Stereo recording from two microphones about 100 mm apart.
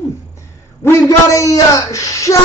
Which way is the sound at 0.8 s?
30° left (ahead or behind).